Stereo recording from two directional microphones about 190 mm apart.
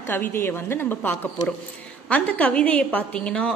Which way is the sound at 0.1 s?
10° left (ahead or behind).